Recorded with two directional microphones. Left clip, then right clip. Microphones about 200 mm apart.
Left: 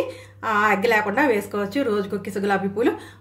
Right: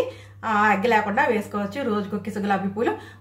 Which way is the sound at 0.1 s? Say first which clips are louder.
Left 1 dB; 35° left (ahead or behind).